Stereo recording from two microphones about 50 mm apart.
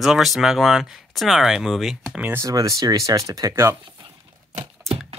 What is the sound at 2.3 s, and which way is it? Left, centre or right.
Speech, right.